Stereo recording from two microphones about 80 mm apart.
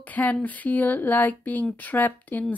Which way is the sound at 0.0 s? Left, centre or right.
Centre.